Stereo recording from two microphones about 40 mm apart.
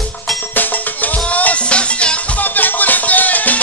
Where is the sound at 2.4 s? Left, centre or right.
Left.